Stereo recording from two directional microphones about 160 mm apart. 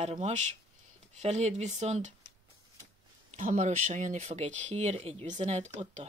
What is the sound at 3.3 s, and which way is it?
Speech, 55° right (ahead or behind).